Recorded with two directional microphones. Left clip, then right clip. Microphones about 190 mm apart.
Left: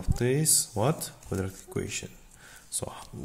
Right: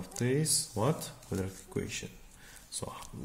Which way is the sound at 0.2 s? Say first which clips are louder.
Left 4 dB; 45° left (ahead or behind).